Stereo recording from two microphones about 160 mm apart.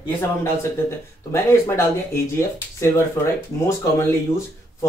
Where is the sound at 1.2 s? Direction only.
15° left (ahead or behind).